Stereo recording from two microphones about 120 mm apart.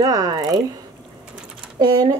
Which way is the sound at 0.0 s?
30° right (ahead or behind).